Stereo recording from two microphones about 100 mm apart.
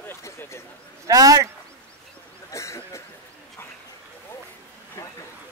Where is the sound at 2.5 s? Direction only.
30° left (ahead or behind).